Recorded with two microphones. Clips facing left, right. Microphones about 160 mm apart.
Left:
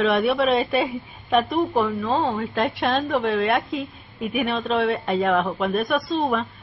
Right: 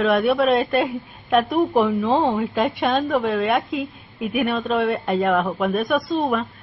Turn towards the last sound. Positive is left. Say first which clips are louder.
# right 2 dB
turn(degrees=0)  # may be behind; listen again after turning